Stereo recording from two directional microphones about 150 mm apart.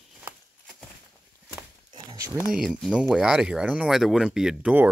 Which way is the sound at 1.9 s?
30° right (ahead or behind).